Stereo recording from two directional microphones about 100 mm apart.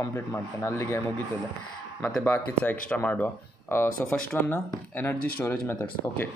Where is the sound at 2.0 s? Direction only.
15° left (ahead or behind).